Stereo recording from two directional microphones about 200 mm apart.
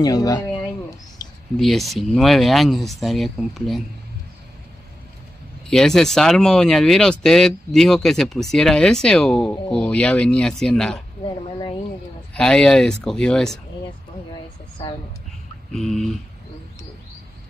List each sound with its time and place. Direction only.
0.0 s speech: 20° left (ahead or behind)
1.6 s speech: centre (ahead or behind)
5.7 s speech: 5° left (ahead or behind)
12.4 s speech: 5° left (ahead or behind)
15.7 s speech: centre (ahead or behind)